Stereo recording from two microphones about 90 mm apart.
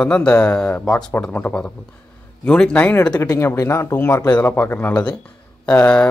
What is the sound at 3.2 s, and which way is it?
Speech, 30° left (ahead or behind).